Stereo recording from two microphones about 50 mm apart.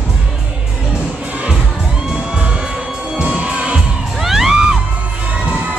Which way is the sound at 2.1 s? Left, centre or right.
Right.